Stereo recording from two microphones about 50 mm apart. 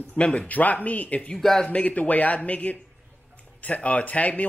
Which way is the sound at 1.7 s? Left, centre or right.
Left.